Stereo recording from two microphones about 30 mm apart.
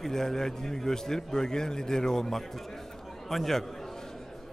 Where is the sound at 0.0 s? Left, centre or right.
Centre.